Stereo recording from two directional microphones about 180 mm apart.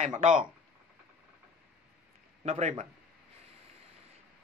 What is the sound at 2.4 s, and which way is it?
Speech, 35° right (ahead or behind).